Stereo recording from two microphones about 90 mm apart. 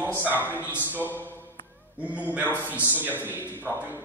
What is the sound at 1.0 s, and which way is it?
Speech, 20° right (ahead or behind).